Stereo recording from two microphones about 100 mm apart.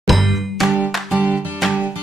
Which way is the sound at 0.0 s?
Centre (ahead or behind).